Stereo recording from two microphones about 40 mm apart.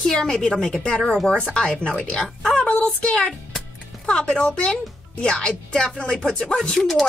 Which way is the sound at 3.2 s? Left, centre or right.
Centre.